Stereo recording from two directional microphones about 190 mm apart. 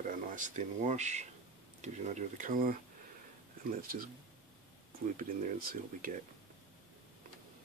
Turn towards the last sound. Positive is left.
turn(degrees=-50)  # may be behind; listen again after turning